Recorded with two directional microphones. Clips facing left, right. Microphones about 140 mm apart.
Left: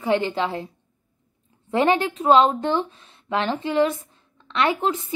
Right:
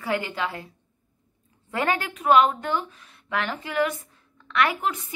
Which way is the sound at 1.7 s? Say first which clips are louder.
Left 6 dB; 25° left (ahead or behind).